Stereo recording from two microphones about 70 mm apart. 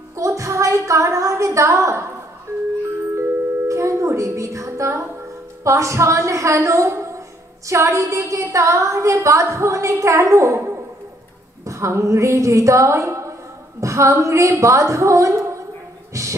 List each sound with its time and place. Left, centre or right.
0.1 s music: right
3.2 s music: right
5.6 s a woman's voice: right
11.6 s a woman's voice: right
16.1 s a sound: right